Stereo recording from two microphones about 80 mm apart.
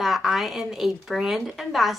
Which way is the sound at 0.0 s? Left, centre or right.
Centre.